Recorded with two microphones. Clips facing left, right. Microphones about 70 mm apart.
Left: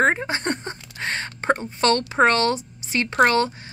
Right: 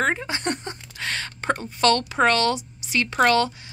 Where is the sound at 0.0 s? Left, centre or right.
Left.